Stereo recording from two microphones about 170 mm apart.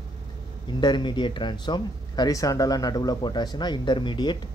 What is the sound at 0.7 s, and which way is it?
Speech, 25° left (ahead or behind).